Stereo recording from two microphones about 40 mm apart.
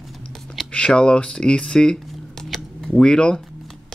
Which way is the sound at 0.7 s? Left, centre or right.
Left.